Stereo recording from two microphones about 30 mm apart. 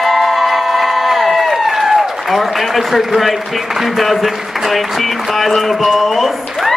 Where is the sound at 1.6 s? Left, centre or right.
Centre.